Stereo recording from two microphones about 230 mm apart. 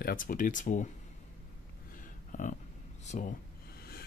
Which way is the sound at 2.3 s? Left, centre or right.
Left.